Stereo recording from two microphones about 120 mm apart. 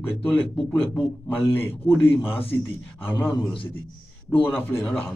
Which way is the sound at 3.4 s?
45° left (ahead or behind).